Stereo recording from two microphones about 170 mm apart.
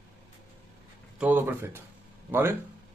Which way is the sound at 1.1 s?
10° right (ahead or behind).